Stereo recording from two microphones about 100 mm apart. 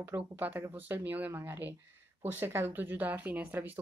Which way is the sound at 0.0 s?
20° right (ahead or behind).